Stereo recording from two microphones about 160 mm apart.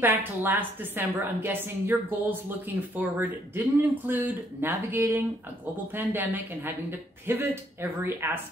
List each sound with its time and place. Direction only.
0.0 s a woman's voice: 15° right (ahead or behind)